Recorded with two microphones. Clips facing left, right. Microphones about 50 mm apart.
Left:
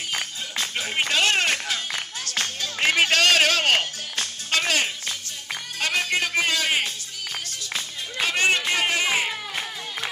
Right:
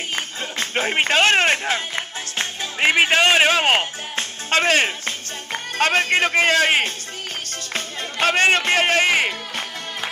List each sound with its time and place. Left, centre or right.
0.1 s music: right